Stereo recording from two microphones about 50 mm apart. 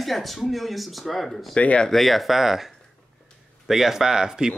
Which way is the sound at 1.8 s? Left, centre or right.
Centre.